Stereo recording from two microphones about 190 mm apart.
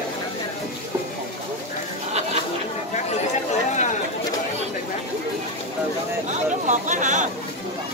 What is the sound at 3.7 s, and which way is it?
Chatter, 40° left (ahead or behind).